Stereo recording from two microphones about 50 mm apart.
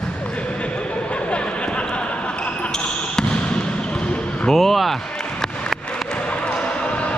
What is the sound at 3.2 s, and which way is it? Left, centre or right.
Basketball bounce, centre.